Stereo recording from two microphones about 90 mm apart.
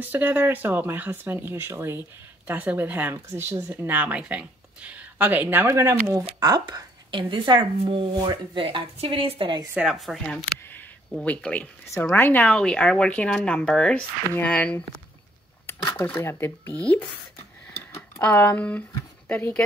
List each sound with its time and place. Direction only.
0.0 s speech: 20° right (ahead or behind)
2.4 s speech: 20° right (ahead or behind); by 6.2 s 35° right (ahead or behind)
6.6 s speech: 65° right (ahead or behind); by 9.6 s 85° right
9.8 s speech: centre (ahead or behind); by 11.7 s 15° left (ahead or behind)
11.8 s speech: 30° left (ahead or behind)
12.4 s speech: 10° left (ahead or behind)
15.8 s speech: 40° left (ahead or behind)
16.2 s speech: 25° left (ahead or behind)
18.4 s speech: 20° left (ahead or behind)